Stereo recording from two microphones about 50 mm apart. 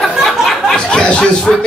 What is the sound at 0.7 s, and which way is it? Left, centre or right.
Chuckle, centre.